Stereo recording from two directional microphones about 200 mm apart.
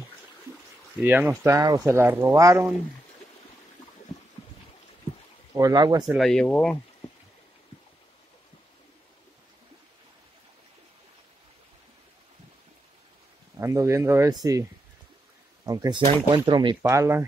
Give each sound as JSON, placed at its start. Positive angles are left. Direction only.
{"t": 1.0, "sound": "speech", "side_deg": -10}
{"t": 5.6, "sound": "speech", "side_deg": -20}
{"t": 6.0, "sound": "speech", "side_deg": 0}
{"t": 13.6, "sound": "speech", "side_deg": -15}
{"t": 15.6, "sound": "speech", "side_deg": -20}